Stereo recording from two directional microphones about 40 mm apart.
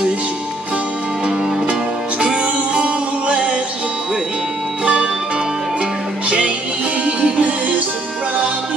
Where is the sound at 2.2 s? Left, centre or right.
Right.